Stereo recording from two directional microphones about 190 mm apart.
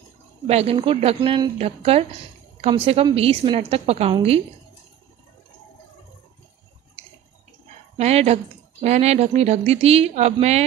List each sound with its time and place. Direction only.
0.5 s a woman's voice: 30° right (ahead or behind)
8.0 s speech: 35° right (ahead or behind)